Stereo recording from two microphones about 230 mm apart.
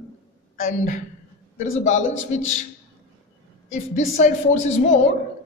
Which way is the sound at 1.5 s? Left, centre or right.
Left.